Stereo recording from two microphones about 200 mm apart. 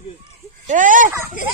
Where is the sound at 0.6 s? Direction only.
40° right (ahead or behind).